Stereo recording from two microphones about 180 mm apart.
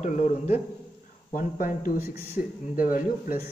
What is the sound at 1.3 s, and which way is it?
A man's voice, 50° left (ahead or behind).